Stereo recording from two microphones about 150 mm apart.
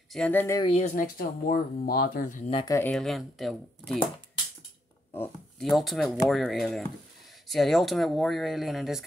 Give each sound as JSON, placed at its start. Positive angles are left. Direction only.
{"t": 0.1, "sound": "speech", "side_deg": 10}
{"t": 0.6, "sound": "speech", "side_deg": 40}
{"t": 0.9, "sound": "speech", "side_deg": 70}
{"t": 2.5, "sound": "speech", "side_deg": 25}
{"t": 2.8, "sound": "speech", "side_deg": 5}
{"t": 5.6, "sound": "speech", "side_deg": 0}